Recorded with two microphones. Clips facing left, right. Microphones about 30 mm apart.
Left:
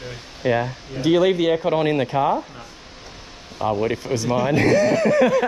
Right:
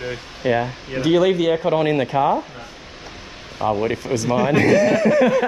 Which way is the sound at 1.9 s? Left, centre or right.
Right.